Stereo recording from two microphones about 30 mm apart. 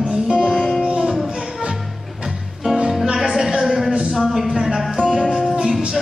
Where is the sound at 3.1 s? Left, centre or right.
Centre.